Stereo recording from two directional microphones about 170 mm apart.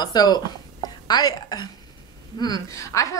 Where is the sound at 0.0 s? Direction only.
25° left (ahead or behind).